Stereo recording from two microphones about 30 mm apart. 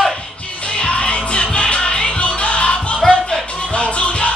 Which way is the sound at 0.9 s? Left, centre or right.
Left.